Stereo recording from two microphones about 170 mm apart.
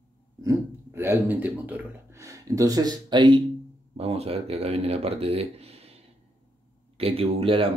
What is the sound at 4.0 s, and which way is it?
Speech, 35° right (ahead or behind).